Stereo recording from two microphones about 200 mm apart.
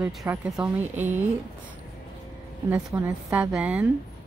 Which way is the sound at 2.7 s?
15° right (ahead or behind).